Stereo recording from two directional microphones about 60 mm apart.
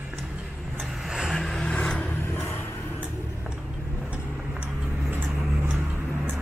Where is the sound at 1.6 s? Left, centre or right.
Centre.